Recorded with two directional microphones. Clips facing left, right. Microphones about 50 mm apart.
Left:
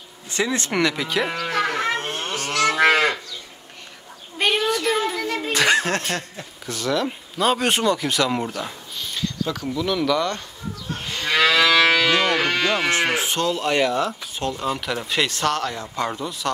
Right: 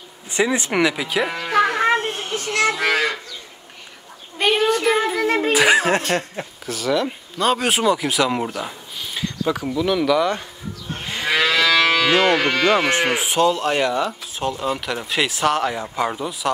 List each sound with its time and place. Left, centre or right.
0.3 s speech: centre
1.3 s speech: centre
2.0 s children playing: left
2.6 s moo: left
4.4 s a child's voice: centre
4.8 s speech: centre
5.2 s speech: right
5.5 s speech: centre
6.6 s speech: centre
11.1 s moo: centre
11.6 s music: centre
12.1 s livestock: centre
12.4 s livestock: centre
12.6 s speech: centre